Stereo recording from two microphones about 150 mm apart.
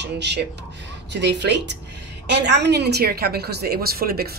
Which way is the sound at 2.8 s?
90° right.